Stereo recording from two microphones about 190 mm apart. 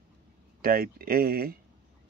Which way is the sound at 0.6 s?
50° right (ahead or behind).